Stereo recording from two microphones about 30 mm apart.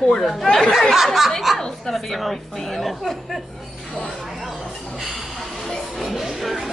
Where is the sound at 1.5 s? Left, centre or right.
Centre.